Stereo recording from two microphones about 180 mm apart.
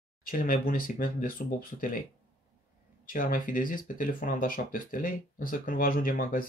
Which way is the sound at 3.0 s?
50° left (ahead or behind).